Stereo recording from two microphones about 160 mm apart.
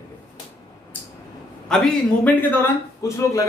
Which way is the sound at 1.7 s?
5° left (ahead or behind).